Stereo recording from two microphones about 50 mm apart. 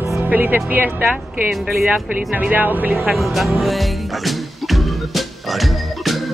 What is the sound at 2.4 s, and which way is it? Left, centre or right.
Speech, right.